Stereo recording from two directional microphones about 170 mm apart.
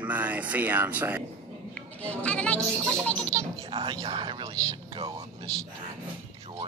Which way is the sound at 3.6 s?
30° right (ahead or behind).